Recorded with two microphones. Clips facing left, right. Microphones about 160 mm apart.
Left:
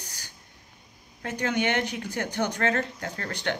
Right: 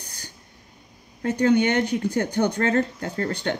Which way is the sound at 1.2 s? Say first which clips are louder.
Right 8 dB; 35° right (ahead or behind).